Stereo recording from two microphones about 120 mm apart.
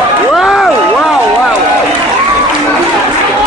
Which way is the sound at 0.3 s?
Centre (ahead or behind).